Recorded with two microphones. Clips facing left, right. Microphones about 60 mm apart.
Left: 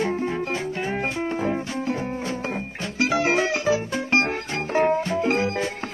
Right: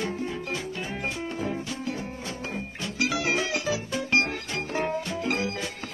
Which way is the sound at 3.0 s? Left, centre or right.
Left.